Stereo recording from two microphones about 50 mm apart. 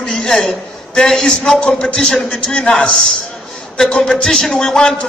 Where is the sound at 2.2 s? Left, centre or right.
Centre.